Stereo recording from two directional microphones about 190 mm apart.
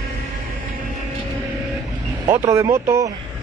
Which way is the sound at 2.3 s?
15° right (ahead or behind).